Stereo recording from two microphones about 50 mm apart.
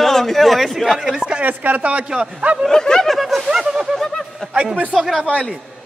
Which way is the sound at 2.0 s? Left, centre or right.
Right.